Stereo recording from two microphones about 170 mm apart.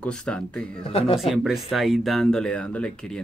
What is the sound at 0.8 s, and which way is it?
Speech, 35° left (ahead or behind).